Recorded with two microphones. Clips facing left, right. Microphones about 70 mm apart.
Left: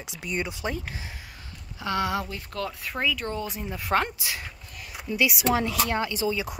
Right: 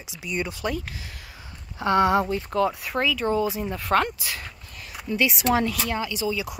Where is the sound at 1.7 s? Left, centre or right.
Right.